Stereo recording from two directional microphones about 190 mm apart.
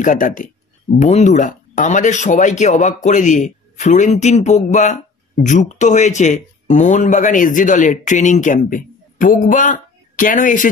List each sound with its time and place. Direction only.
0.0 s speech: 45° left (ahead or behind)